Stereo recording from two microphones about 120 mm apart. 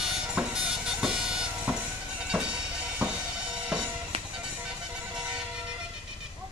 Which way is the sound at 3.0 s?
10° right (ahead or behind).